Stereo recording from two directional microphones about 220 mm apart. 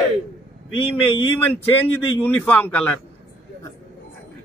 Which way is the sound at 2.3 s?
5° left (ahead or behind).